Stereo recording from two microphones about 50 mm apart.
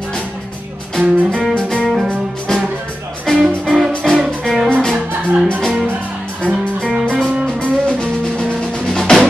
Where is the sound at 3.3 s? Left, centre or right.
Centre.